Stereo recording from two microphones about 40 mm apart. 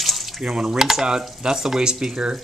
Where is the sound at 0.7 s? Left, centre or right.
Centre.